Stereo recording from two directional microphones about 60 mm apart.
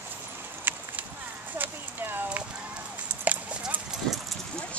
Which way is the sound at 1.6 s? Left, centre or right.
Right.